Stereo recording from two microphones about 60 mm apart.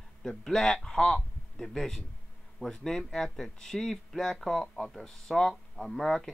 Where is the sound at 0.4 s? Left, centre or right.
Centre.